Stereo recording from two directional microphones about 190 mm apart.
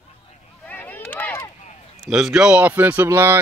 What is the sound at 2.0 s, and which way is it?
Speech, 5° right (ahead or behind).